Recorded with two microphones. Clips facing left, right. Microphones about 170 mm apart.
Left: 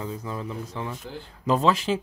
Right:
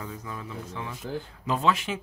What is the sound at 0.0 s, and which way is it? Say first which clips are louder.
Speech: left 5 dB; 25° left (ahead or behind).